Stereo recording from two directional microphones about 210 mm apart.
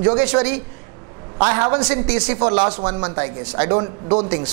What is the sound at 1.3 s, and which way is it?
A woman's voice, 25° right (ahead or behind).